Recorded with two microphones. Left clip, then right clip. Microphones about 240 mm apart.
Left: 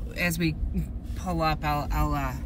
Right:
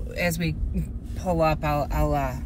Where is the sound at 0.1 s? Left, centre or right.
Centre.